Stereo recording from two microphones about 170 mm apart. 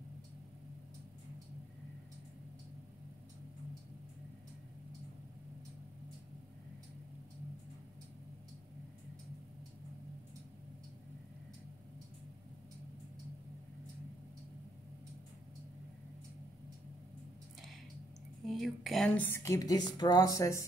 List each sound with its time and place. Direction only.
18.4 s a woman's voice: centre (ahead or behind); by 20.6 s 20° left (ahead or behind)